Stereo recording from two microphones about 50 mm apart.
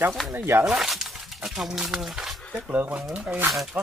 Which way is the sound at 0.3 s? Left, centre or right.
Right.